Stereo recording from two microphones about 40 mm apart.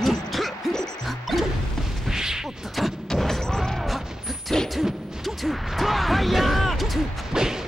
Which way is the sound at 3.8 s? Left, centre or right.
Centre.